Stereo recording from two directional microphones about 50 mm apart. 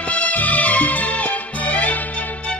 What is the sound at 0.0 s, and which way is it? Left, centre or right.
Music, left.